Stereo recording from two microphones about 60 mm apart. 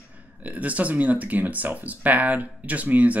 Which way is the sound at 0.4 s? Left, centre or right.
Right.